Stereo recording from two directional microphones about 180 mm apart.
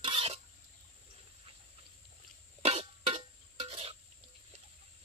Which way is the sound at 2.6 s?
30° right (ahead or behind).